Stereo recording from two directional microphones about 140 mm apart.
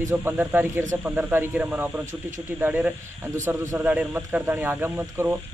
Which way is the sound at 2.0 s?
65° right (ahead or behind).